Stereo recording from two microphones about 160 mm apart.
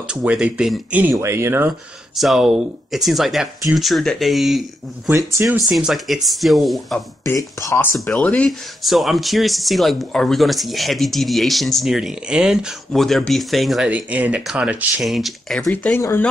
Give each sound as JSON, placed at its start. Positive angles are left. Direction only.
{"t": 0.1, "sound": "speech", "side_deg": -5}
{"t": 1.7, "sound": "speech", "side_deg": 0}
{"t": 5.1, "sound": "speech", "side_deg": -20}
{"t": 5.7, "sound": "speech", "side_deg": -5}
{"t": 7.2, "sound": "speech", "side_deg": 20}
{"t": 8.1, "sound": "speech", "side_deg": 5}